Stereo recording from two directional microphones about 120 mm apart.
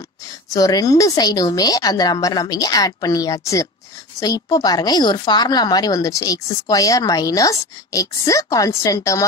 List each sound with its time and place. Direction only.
0.5 s a woman's voice: 30° left (ahead or behind)